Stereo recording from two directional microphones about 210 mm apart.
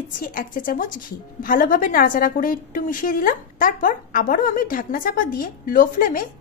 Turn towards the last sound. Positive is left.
turn(degrees=40)  # may be behind; listen again after turning